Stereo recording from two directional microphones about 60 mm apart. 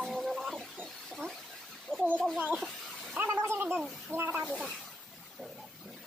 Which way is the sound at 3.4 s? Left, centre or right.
Right.